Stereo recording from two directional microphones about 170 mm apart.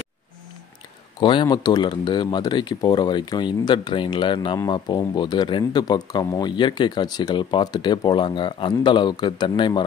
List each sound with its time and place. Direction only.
1.2 s speech: 30° left (ahead or behind)